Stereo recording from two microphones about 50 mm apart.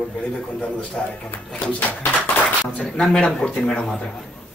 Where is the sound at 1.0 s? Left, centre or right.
Centre.